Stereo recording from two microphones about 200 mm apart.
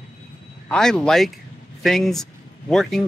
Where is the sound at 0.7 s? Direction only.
5° left (ahead or behind).